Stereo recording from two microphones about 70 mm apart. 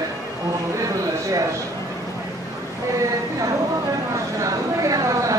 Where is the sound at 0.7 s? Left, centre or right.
Right.